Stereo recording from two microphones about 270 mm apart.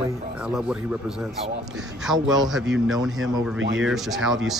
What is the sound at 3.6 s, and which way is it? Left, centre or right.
Speech, right.